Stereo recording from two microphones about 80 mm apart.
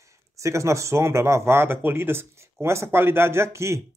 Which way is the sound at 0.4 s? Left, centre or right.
Right.